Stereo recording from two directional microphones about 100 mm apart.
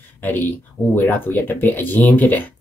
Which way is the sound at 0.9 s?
20° left (ahead or behind).